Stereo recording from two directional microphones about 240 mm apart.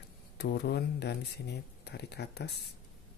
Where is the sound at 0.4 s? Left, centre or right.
Left.